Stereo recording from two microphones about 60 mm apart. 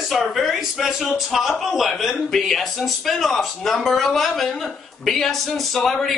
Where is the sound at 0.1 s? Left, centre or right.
Centre.